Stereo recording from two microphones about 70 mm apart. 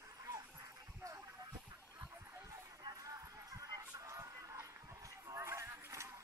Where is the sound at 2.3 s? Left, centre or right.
Right.